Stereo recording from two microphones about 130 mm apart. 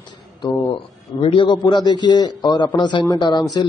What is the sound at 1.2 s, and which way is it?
Speech, 40° left (ahead or behind).